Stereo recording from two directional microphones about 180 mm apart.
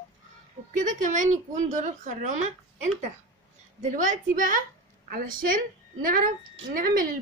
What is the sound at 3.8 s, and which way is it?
A woman's voice, 45° right (ahead or behind).